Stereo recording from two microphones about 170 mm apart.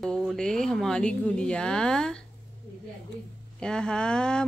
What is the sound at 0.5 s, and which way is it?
A woman's voice, 5° left (ahead or behind).